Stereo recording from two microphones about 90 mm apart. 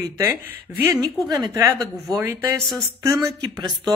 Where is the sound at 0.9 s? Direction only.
45° right (ahead or behind).